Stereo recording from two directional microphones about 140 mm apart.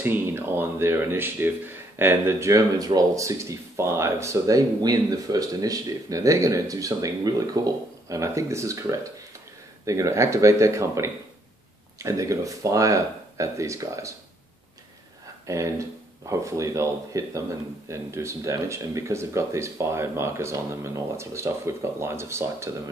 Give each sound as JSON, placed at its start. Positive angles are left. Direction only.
{"t": 0.0, "sound": "speech", "side_deg": -15}
{"t": 9.8, "sound": "speech", "side_deg": -20}
{"t": 15.4, "sound": "speech", "side_deg": -20}